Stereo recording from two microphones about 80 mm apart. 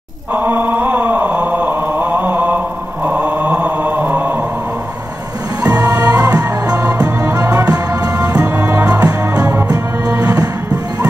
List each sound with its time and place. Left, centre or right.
0.3 s chant: right
5.6 s music: right
8.6 s music: right
8.9 s music: right